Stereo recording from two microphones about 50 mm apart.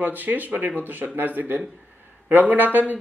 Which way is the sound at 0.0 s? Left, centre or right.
Right.